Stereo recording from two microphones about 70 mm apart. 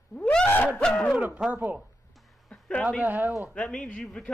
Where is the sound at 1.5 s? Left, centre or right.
Right.